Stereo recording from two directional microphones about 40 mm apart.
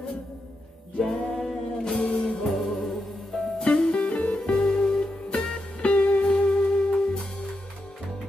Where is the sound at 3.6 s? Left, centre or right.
Left.